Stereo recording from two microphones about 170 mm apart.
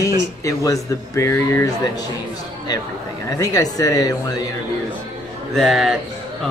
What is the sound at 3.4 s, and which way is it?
Speech, 20° left (ahead or behind).